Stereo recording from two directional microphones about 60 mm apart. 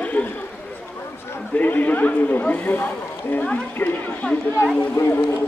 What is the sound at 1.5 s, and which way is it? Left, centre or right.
A man's voice, left.